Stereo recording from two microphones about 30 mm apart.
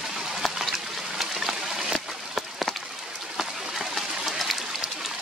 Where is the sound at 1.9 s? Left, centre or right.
Centre.